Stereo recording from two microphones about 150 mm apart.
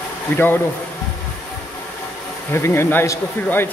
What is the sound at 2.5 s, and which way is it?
Speech, 15° left (ahead or behind).